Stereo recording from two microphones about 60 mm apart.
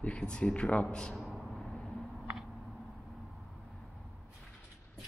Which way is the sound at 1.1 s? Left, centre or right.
Centre.